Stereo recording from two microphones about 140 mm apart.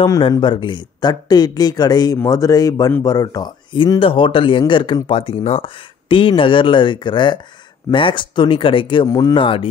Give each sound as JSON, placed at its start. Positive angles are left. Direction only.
{"t": 0.0, "sound": "speech", "side_deg": 30}
{"t": 9.0, "sound": "speech", "side_deg": 25}
{"t": 9.3, "sound": "speech", "side_deg": 40}